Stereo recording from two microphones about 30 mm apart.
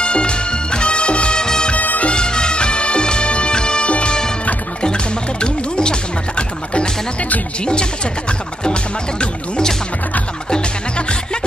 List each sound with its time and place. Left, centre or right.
0.0 s music: left
1.4 s music: left
1.8 s music: left
2.1 s music: left
3.5 s music: left
7.6 s speech: left